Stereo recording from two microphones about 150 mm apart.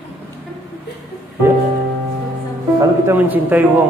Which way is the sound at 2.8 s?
15° right (ahead or behind).